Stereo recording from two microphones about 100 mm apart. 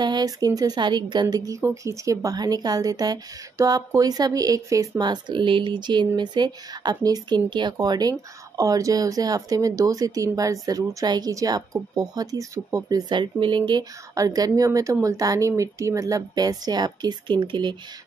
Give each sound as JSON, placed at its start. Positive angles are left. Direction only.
{"t": 0.0, "sound": "a woman's voice", "side_deg": -45}
{"t": 14.1, "sound": "speech", "side_deg": -35}